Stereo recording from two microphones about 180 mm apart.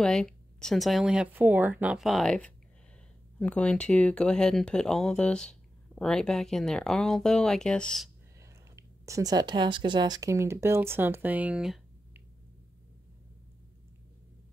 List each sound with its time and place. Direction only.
0.0 s speech: 5° left (ahead or behind)
8.4 s speech: 15° right (ahead or behind)